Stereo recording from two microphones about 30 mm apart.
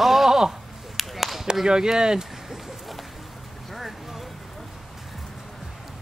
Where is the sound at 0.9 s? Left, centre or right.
Centre.